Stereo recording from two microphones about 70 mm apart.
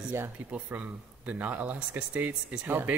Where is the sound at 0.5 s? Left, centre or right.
Centre.